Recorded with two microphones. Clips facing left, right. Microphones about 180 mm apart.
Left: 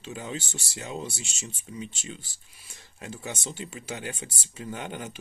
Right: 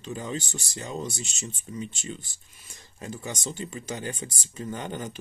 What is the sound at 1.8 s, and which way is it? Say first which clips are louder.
Speech: right 2 dB; 45° right (ahead or behind).